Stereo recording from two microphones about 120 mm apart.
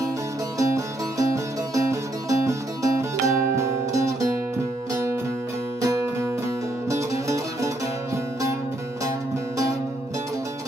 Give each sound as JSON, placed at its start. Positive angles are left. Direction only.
{"t": 0.6, "sound": "music", "side_deg": -25}
{"t": 5.8, "sound": "music", "side_deg": -30}